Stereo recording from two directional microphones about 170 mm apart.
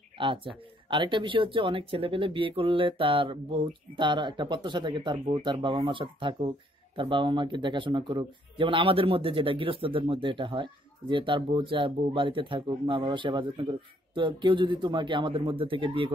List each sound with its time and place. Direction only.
0.2 s speech: 30° right (ahead or behind)